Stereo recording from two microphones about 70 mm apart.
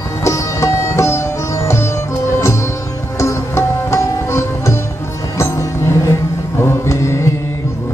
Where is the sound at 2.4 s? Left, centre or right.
Left.